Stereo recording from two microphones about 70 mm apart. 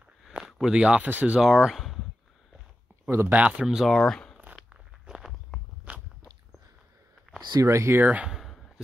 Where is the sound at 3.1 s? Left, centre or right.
Right.